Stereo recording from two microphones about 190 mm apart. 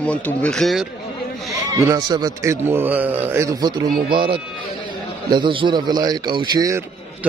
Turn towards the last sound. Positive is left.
turn(degrees=-20)  # may be behind; listen again after turning